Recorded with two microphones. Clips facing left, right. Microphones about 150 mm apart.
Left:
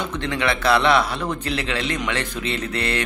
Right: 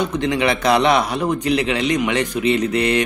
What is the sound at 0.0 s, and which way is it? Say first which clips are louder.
A man's voice: right 5 dB; 15° right (ahead or behind).